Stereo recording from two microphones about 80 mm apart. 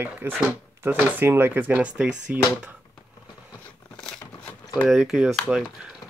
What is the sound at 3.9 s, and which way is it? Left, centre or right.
Crumpling, centre.